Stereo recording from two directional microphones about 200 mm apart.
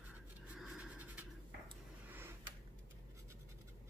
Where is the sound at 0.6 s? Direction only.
5° right (ahead or behind).